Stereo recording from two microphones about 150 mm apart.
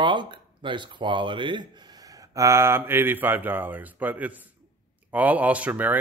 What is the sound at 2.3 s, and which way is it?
Speech, 20° right (ahead or behind).